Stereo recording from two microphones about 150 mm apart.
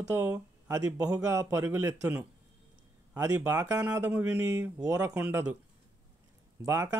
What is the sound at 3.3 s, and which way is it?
Speech, 20° right (ahead or behind).